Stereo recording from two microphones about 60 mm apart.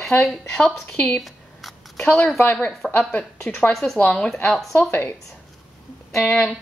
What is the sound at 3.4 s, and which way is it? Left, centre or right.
A woman's voice, centre.